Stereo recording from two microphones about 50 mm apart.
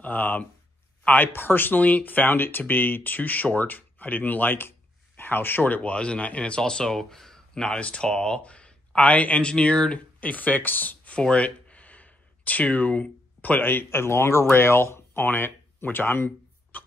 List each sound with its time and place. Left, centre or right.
0.0 s speech: left
5.8 s speech: left
8.4 s a sound: left
9.1 s speech: left
10.2 s speech: left
16.7 s a sound: left